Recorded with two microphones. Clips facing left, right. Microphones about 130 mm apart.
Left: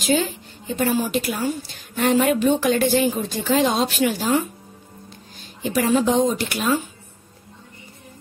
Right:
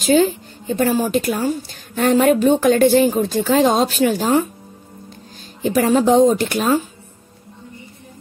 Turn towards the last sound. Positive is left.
turn(degrees=-40)  # may be behind; listen again after turning